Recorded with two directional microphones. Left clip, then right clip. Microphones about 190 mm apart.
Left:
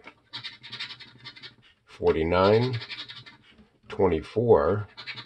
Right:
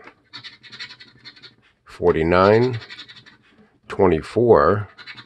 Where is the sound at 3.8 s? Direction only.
50° right (ahead or behind).